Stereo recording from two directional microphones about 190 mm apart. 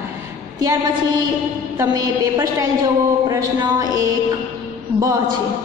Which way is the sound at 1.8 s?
20° right (ahead or behind).